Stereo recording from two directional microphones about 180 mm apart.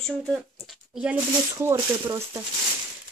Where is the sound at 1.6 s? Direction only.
15° right (ahead or behind).